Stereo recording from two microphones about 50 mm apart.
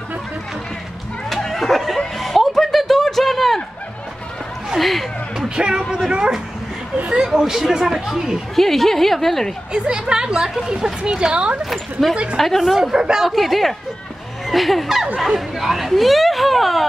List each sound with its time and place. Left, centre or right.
1.3 s chuckle: centre
4.6 s a sound: centre
5.6 s a woman's voice: centre
8.5 s speech: centre
9.7 s a woman's voice: centre
11.7 s speech: centre
12.7 s speech: centre